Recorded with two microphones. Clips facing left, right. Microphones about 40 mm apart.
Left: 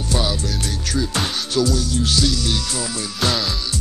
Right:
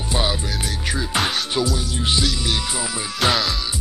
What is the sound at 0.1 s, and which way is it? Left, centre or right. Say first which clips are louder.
Music: even; right.